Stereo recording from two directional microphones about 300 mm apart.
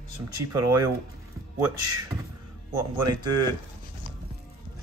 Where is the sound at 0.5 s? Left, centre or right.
Centre.